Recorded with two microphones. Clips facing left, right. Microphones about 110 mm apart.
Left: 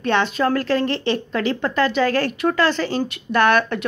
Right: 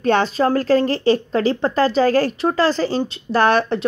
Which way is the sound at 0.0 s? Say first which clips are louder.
Right 3 dB; 40° right (ahead or behind).